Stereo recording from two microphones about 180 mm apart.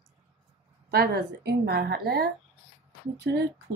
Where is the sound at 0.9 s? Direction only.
60° right (ahead or behind).